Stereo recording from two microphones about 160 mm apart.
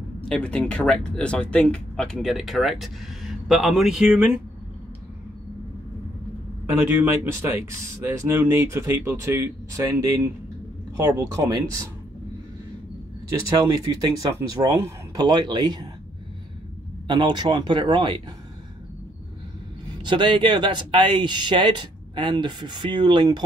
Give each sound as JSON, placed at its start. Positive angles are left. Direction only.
{"t": 0.3, "sound": "speech", "side_deg": 5}
{"t": 6.7, "sound": "speech", "side_deg": -10}
{"t": 13.3, "sound": "speech", "side_deg": -20}
{"t": 17.1, "sound": "speech", "side_deg": -25}
{"t": 20.0, "sound": "speech", "side_deg": -30}